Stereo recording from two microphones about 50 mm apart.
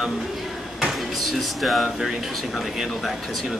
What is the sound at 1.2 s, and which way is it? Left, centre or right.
Speech, centre.